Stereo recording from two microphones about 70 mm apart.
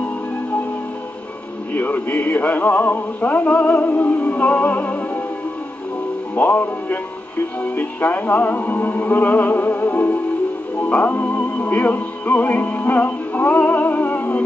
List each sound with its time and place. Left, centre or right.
1.7 s music: left
6.3 s music: left